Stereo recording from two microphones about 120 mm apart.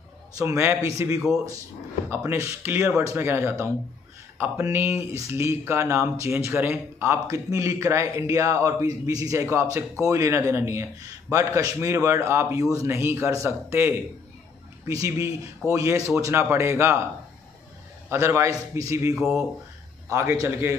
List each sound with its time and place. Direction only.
0.4 s a man's voice: 25° right (ahead or behind)
18.1 s a man's voice: 25° right (ahead or behind)